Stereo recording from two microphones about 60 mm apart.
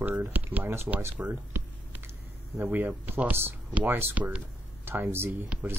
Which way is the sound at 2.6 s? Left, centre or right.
Right.